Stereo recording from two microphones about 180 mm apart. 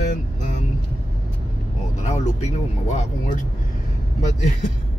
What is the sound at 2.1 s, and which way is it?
A man's voice, 40° left (ahead or behind).